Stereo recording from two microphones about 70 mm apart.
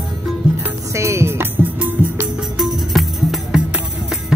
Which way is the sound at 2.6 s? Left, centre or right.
Centre.